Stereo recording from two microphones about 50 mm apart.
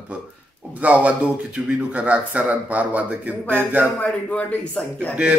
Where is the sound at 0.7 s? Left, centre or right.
Right.